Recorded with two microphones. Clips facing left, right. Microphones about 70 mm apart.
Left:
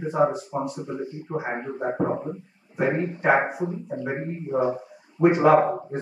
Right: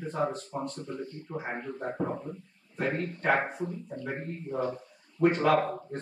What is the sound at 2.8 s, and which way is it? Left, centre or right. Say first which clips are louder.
Speech: left 7 dB; centre.